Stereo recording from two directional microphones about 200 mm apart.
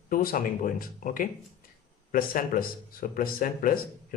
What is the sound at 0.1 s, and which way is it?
Speech, 45° left (ahead or behind).